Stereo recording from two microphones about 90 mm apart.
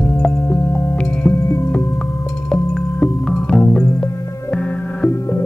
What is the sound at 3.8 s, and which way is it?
Music, 30° left (ahead or behind).